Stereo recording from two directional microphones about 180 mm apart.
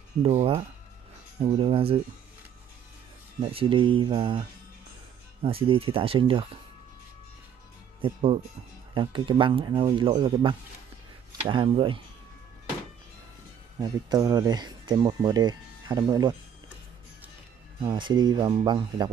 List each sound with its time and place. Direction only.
0.2 s speech: 35° right (ahead or behind)
3.3 s speech: 30° right (ahead or behind)
8.0 s speech: 30° right (ahead or behind)
13.7 s speech: 20° right (ahead or behind)
17.8 s speech: 25° right (ahead or behind)